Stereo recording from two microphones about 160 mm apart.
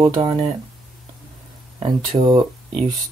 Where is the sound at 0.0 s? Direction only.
30° right (ahead or behind).